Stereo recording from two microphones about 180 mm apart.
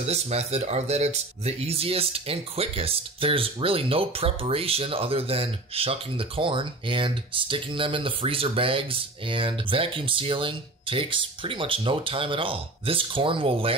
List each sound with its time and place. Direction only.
0.0 s speech: 35° right (ahead or behind)